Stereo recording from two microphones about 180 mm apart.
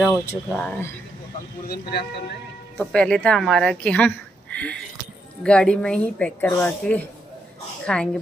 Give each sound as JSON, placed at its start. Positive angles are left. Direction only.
{"t": 0.5, "sound": "speech", "side_deg": 5}
{"t": 1.7, "sound": "speech", "side_deg": 65}
{"t": 2.8, "sound": "a woman's voice", "side_deg": 5}